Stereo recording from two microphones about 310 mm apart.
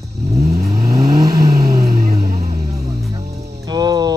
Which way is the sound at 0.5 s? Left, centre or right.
Right.